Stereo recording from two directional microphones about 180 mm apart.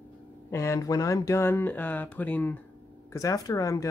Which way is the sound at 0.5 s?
15° left (ahead or behind).